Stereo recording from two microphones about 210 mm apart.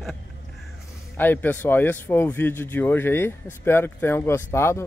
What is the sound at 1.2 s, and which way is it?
Speech, 10° left (ahead or behind).